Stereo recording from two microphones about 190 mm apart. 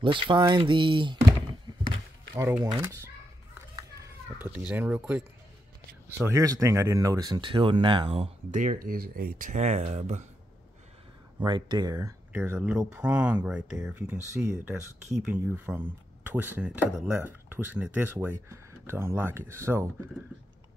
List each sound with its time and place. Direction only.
0.0 s speech: 25° right (ahead or behind)
2.3 s a child's voice: 15° right (ahead or behind); by 8.5 s 30° right (ahead or behind)
8.5 s speech: 45° right (ahead or behind)
11.3 s speech: 20° right (ahead or behind)